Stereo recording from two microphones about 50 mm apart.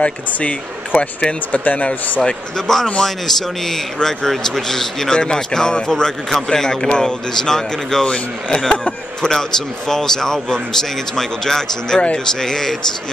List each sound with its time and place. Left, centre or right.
0.0 s speech: left
2.2 s a man's voice: centre